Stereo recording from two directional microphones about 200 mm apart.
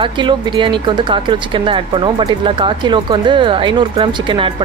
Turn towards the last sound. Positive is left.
turn(degrees=-25)  # may be behind; listen again after turning